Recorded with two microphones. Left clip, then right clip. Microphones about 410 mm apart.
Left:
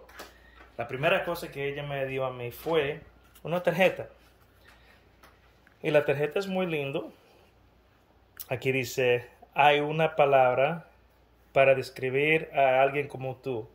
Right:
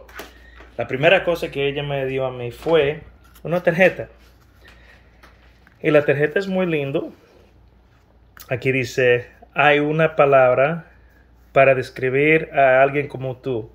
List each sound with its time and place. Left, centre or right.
1.0 s a man's voice: centre
2.0 s speech: centre
5.8 s speech: centre
8.4 s speech: centre